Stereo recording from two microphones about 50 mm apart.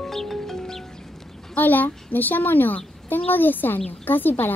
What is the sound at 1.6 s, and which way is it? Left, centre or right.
A woman's voice, left.